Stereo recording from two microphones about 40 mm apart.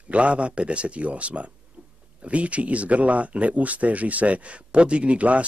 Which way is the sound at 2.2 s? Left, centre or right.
Right.